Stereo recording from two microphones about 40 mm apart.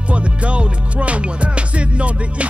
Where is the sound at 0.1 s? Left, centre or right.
Right.